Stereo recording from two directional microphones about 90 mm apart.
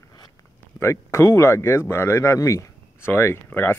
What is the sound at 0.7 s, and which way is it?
Speech, 30° left (ahead or behind).